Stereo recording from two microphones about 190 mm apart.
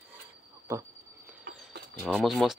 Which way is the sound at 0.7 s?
20° right (ahead or behind).